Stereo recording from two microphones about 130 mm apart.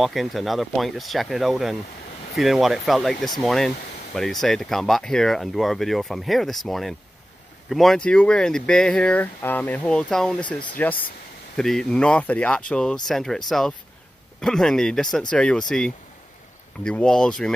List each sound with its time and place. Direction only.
0.0 s speech: centre (ahead or behind)
16.8 s speech: 5° left (ahead or behind)